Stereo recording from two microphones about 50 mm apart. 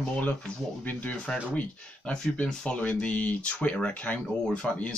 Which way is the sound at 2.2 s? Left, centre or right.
Left.